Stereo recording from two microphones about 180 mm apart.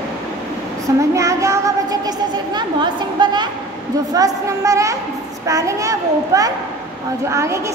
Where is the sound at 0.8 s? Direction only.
15° right (ahead or behind).